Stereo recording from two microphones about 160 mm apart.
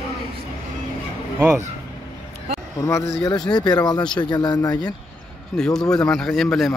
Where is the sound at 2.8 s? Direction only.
20° left (ahead or behind).